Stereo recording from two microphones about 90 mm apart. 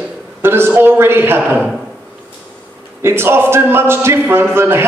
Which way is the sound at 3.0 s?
25° right (ahead or behind).